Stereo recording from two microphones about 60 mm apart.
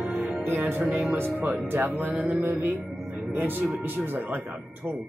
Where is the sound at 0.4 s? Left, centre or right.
Right.